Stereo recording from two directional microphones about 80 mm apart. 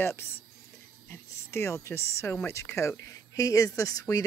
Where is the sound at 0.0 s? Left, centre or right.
Left.